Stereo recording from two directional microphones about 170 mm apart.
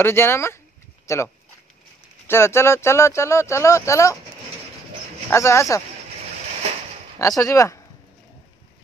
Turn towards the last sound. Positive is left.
turn(degrees=15)  # may be behind; listen again after turning